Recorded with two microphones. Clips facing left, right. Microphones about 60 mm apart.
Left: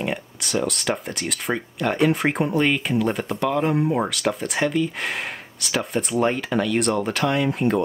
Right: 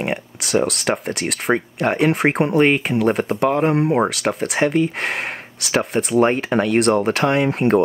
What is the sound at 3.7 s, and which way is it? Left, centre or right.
Speech, right.